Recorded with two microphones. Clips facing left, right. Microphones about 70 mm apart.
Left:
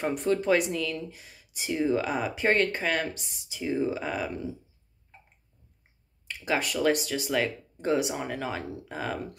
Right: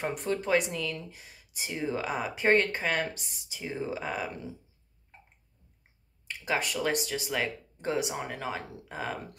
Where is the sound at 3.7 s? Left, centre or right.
Centre.